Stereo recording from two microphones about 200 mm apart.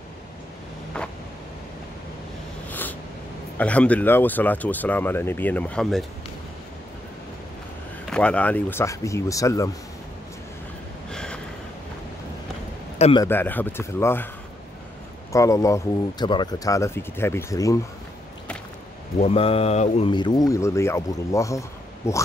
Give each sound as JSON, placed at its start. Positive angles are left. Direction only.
{"t": 2.7, "sound": "a sound", "side_deg": 10}
{"t": 3.5, "sound": "speech", "side_deg": 5}
{"t": 8.1, "sound": "speech", "side_deg": 5}
{"t": 11.1, "sound": "gasp", "side_deg": 5}
{"t": 13.2, "sound": "speech", "side_deg": 10}
{"t": 15.3, "sound": "speech", "side_deg": 15}
{"t": 19.1, "sound": "speech", "side_deg": 30}